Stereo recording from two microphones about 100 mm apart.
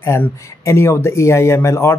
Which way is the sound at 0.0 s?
30° left (ahead or behind).